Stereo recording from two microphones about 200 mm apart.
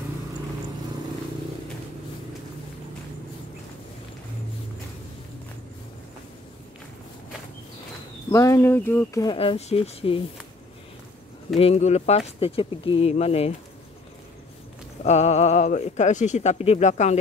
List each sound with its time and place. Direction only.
8.3 s speech: 15° left (ahead or behind)
11.5 s speech: 30° left (ahead or behind)
15.0 s speech: 35° left (ahead or behind)